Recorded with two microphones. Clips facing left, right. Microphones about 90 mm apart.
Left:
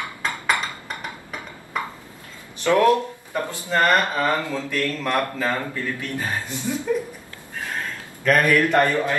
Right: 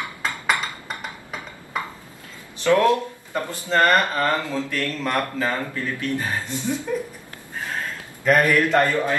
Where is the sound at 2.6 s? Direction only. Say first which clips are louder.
Even; 15° left (ahead or behind).